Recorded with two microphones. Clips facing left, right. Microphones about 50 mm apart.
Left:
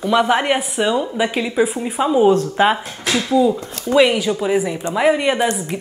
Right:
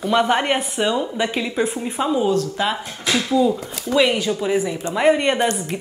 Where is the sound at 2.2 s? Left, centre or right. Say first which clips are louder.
Left 6 dB; left.